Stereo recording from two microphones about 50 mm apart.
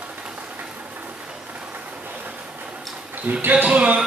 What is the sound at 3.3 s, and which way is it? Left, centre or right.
Speech, right.